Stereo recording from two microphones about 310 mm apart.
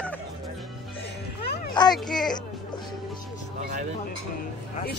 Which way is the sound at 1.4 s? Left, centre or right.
Left.